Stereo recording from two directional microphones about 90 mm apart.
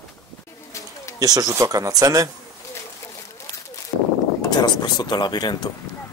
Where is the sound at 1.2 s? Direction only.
45° right (ahead or behind).